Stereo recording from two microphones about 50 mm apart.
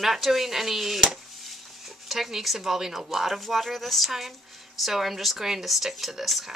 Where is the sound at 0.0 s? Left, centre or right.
Centre.